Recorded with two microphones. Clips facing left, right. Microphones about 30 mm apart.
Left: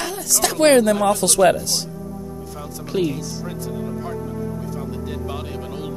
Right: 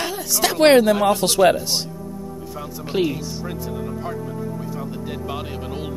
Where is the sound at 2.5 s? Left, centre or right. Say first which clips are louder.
Right 1 dB; centre.